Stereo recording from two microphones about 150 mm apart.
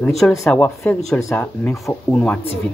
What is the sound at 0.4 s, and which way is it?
Speech, 10° left (ahead or behind).